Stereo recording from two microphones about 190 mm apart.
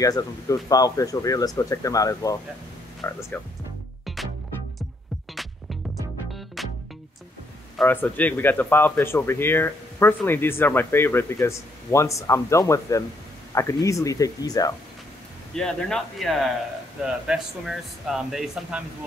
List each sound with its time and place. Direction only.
0.0 s speech: 20° left (ahead or behind)
5.3 s music: centre (ahead or behind)
7.7 s speech: 10° left (ahead or behind)
15.5 s speech: 5° left (ahead or behind)